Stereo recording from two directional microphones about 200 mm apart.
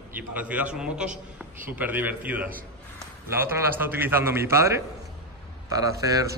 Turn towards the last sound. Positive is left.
turn(degrees=-15)  # may be behind; listen again after turning